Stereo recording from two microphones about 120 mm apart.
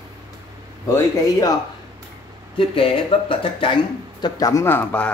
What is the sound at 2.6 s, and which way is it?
Speech, 50° left (ahead or behind).